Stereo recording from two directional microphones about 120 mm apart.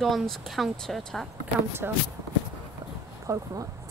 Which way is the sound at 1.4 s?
20° right (ahead or behind).